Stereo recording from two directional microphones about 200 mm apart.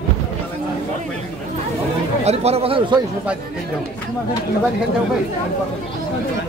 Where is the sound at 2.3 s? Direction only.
30° right (ahead or behind).